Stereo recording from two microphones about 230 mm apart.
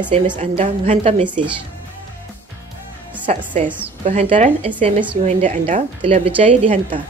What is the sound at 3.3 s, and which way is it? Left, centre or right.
Speech, right.